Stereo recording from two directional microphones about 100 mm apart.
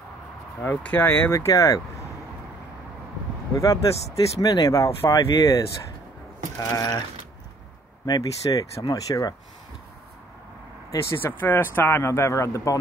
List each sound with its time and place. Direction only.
0.6 s speech: 15° left (ahead or behind)
3.5 s speech: 35° left (ahead or behind)
6.6 s speech: 35° left (ahead or behind)
8.0 s speech: 40° left (ahead or behind)
11.1 s speech: 20° left (ahead or behind)